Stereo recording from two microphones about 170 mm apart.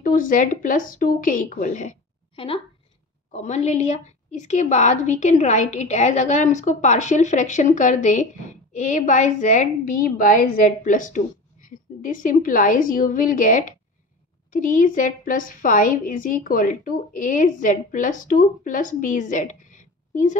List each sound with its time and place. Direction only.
0.0 s a woman's voice: 55° left (ahead or behind)
2.3 s a woman's voice: 35° left (ahead or behind)